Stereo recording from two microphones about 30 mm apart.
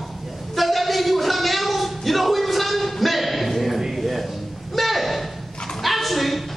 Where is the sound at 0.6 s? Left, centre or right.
Centre.